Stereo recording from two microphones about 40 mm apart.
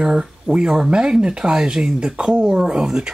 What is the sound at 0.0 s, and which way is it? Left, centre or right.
Speech, centre.